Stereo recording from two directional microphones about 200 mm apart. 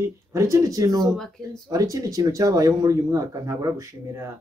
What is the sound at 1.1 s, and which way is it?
Speech, centre (ahead or behind).